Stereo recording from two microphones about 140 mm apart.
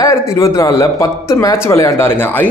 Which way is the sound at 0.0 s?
25° left (ahead or behind).